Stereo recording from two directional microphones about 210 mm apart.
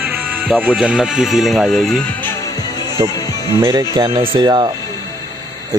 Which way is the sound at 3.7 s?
15° right (ahead or behind).